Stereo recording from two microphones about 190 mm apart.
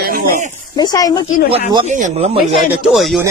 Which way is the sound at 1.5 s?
25° right (ahead or behind).